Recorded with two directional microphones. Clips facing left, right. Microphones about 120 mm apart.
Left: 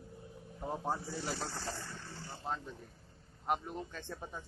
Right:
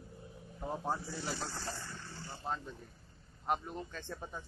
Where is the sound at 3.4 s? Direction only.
5° left (ahead or behind).